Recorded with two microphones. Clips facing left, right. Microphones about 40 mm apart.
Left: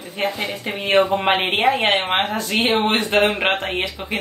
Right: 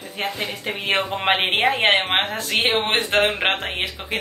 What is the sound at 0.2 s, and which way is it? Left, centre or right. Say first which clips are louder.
A woman's voice: left 3 dB; centre.